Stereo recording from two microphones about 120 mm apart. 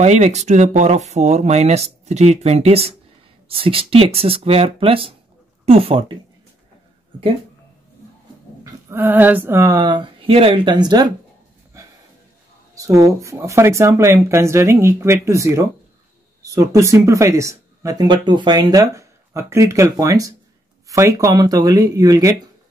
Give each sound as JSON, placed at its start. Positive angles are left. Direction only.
{"t": 0.0, "sound": "speech", "side_deg": -70}
{"t": 8.9, "sound": "speech", "side_deg": -15}
{"t": 12.7, "sound": "speech", "side_deg": -25}